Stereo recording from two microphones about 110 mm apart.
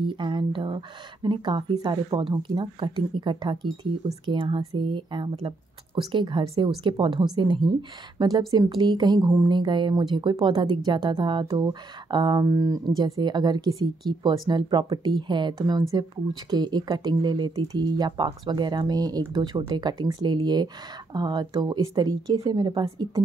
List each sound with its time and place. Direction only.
0.0 s speech: 45° right (ahead or behind)